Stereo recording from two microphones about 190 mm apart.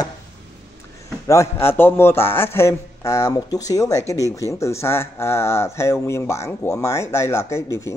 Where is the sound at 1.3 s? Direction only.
15° left (ahead or behind).